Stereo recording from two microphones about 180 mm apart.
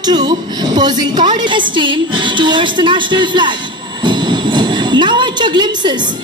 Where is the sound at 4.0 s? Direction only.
25° right (ahead or behind).